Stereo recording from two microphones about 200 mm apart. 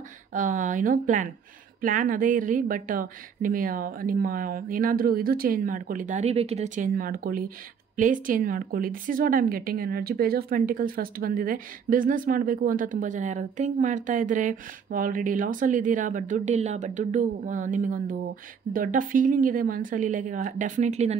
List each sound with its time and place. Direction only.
0.3 s a woman's voice: 40° right (ahead or behind)